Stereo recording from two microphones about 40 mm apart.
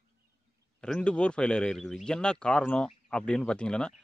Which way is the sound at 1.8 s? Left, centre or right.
Centre.